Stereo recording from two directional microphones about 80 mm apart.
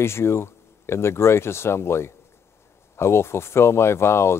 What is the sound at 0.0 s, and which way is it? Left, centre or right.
Speech, left.